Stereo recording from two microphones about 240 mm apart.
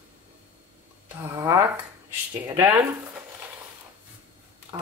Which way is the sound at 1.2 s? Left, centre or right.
Centre.